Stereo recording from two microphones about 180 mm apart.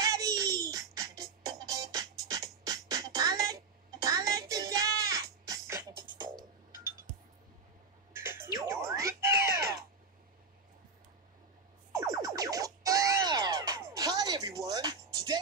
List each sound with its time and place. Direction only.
0.0 s music: 20° right (ahead or behind)
8.1 s music: 15° right (ahead or behind)
11.9 s music: 20° right (ahead or behind)